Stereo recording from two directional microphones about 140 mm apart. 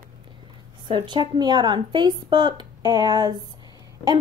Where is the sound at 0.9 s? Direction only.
35° right (ahead or behind).